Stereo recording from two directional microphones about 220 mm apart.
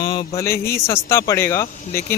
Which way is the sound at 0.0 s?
20° left (ahead or behind).